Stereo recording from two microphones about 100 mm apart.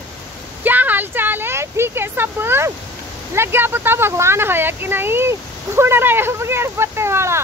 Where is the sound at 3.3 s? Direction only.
25° right (ahead or behind).